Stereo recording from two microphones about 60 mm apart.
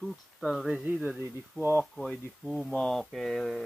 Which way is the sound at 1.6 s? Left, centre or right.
Right.